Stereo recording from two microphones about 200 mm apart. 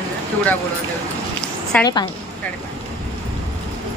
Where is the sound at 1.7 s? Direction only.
5° left (ahead or behind).